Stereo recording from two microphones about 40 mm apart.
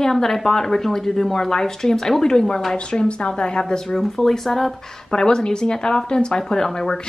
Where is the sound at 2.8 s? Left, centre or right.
Left.